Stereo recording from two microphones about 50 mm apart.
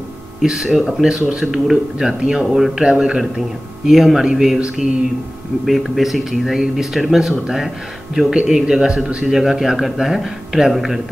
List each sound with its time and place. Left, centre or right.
0.4 s a man's voice: centre
3.2 s a man's voice: centre
5.7 s a man's voice: centre